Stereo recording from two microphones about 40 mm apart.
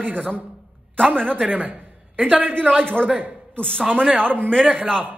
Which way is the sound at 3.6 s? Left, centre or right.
Left.